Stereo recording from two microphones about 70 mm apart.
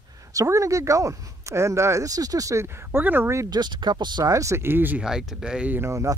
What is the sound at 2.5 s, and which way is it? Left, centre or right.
Speech, right.